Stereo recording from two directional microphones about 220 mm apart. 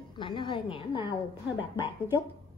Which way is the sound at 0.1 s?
20° left (ahead or behind).